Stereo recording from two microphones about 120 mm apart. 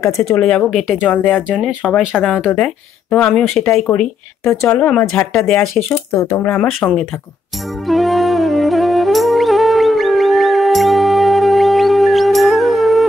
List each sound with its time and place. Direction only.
0.4 s speech: 5° left (ahead or behind)
6.1 s speech: 25° left (ahead or behind)
6.4 s speech: 10° left (ahead or behind)
7.8 s music: centre (ahead or behind)